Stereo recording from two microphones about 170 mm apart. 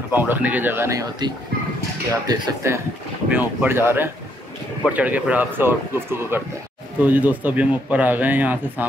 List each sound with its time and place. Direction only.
0.1 s speech: 10° right (ahead or behind)